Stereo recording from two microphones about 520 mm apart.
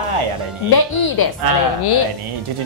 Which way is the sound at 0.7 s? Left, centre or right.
Left.